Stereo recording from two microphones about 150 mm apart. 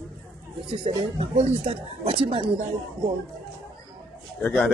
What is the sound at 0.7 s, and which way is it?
Speech, 35° right (ahead or behind).